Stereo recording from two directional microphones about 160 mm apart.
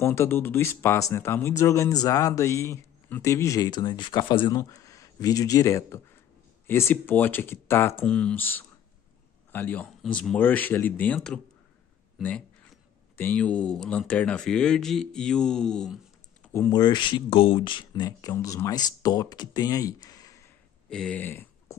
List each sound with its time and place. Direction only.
0.0 s a man's voice: 15° left (ahead or behind)
16.5 s speech: 15° left (ahead or behind)
16.8 s a man's voice: 30° left (ahead or behind)
20.9 s speech: 5° left (ahead or behind)